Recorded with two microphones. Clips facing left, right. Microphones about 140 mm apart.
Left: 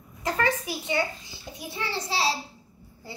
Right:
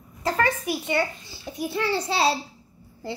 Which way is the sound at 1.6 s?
65° right (ahead or behind).